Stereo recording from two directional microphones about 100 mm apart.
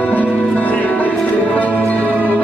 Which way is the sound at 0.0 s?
15° left (ahead or behind).